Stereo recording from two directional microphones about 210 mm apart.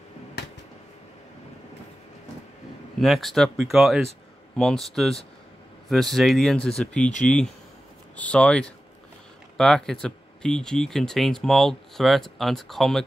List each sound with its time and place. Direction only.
0.4 s a sound: 50° left (ahead or behind)
3.0 s speech: centre (ahead or behind)
8.2 s speech: 5° left (ahead or behind)